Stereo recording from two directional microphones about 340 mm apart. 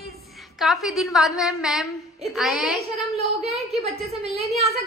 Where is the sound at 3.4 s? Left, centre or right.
Centre.